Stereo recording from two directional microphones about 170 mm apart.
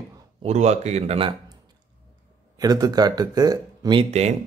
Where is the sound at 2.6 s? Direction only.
20° right (ahead or behind).